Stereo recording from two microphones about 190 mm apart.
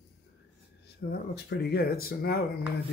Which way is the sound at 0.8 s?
60° left (ahead or behind).